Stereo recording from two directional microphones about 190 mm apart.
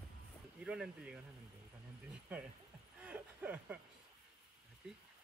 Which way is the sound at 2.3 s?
5° right (ahead or behind).